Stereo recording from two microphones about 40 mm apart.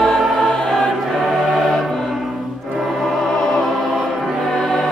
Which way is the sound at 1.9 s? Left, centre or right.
Centre.